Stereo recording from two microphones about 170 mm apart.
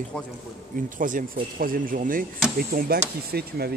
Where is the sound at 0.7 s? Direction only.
50° right (ahead or behind).